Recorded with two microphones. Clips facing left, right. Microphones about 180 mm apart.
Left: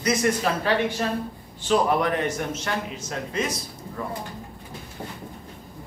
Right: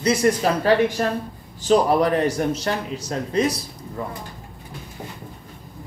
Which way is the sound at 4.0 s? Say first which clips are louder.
Right 2 dB; 20° right (ahead or behind).